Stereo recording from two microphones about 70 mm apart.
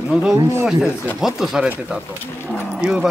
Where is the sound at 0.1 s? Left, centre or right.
Centre.